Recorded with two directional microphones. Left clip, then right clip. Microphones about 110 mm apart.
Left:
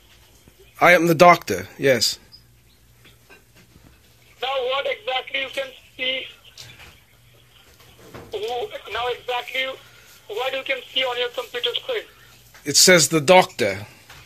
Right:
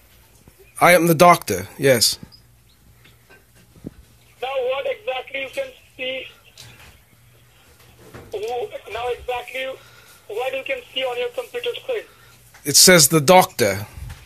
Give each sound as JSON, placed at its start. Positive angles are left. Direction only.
{"t": 0.7, "sound": "speech", "side_deg": -30}
{"t": 1.7, "sound": "speech", "side_deg": -40}
{"t": 4.4, "sound": "a sound", "side_deg": -10}
{"t": 8.3, "sound": "speech", "side_deg": -15}
{"t": 12.6, "sound": "speech", "side_deg": -40}